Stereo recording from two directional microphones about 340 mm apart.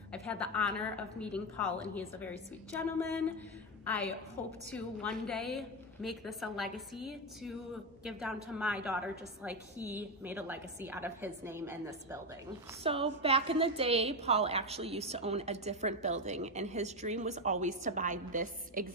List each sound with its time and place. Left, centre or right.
0.1 s a woman's voice: centre
4.7 s a woman's voice: centre; by 18.9 s right